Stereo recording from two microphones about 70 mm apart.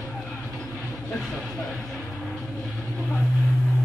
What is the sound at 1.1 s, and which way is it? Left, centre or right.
Speech, centre.